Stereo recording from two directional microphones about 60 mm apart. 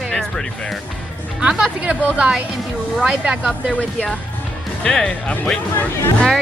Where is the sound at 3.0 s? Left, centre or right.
Centre.